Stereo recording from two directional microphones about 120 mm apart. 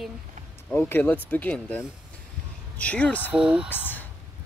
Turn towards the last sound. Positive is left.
turn(degrees=-10)  # may be behind; listen again after turning